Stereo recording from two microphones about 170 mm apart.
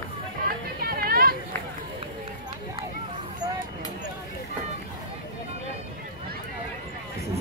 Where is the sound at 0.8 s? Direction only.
60° right (ahead or behind).